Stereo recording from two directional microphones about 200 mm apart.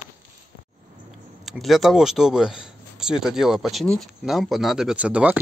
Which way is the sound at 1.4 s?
Centre (ahead or behind).